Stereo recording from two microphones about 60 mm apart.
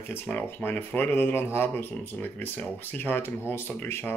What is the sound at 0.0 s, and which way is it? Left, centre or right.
Speech, left.